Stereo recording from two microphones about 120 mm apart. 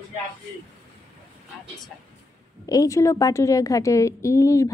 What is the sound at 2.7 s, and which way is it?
A woman's voice, 30° left (ahead or behind).